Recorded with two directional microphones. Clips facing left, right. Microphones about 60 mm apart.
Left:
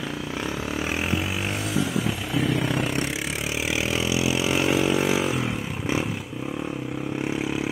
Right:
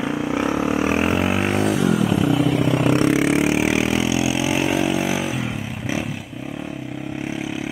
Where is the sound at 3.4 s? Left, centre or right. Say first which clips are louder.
Right 9 dB; right; by 4.6 s centre.